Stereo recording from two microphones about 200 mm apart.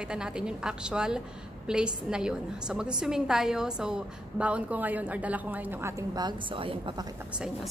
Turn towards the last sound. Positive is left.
turn(degrees=-25)  # may be behind; listen again after turning